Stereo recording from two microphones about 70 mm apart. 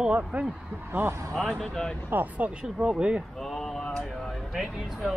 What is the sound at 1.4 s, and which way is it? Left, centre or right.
Speech, centre.